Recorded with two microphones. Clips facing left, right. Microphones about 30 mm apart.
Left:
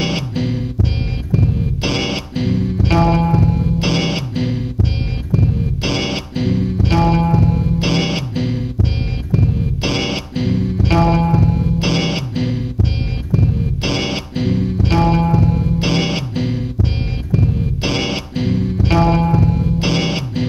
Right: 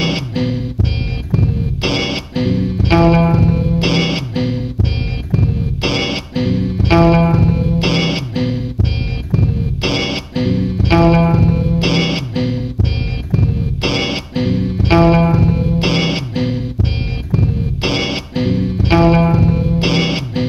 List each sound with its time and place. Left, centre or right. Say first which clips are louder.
0.0 s music: right 2 dB; centre